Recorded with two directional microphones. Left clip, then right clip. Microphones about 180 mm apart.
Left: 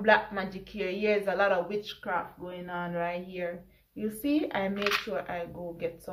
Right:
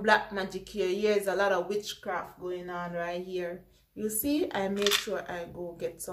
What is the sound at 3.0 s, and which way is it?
A woman's voice, 15° right (ahead or behind).